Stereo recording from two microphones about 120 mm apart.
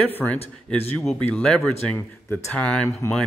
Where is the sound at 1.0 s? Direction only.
5° left (ahead or behind).